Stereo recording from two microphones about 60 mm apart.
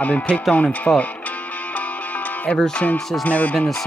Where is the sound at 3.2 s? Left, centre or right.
Left.